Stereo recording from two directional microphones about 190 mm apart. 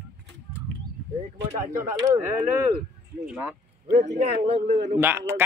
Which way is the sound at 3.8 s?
40° right (ahead or behind).